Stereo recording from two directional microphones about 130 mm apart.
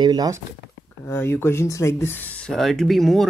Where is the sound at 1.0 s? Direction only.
20° left (ahead or behind).